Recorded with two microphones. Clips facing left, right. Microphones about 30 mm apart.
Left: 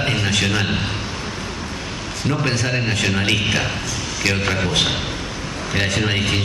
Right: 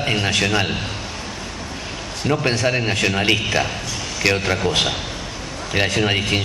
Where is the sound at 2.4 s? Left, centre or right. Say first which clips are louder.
Right 2 dB; centre.